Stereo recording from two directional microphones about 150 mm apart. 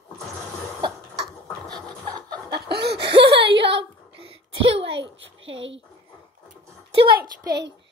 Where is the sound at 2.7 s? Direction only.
90° right.